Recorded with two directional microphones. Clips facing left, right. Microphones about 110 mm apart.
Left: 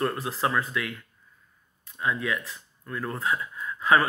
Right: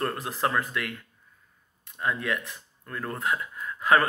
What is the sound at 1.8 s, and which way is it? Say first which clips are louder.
Speech: left 1 dB; 55° right (ahead or behind).